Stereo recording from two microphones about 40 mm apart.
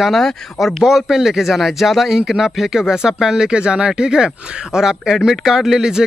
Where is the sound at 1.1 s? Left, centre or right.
Centre.